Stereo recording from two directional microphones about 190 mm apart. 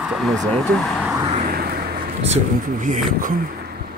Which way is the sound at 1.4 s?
50° right (ahead or behind).